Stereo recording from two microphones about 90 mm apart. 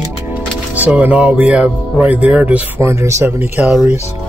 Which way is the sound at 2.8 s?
30° right (ahead or behind).